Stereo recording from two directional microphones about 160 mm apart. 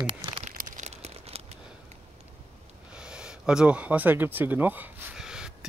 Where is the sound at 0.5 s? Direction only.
50° right (ahead or behind).